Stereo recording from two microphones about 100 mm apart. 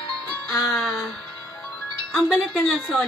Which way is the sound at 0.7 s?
Centre (ahead or behind).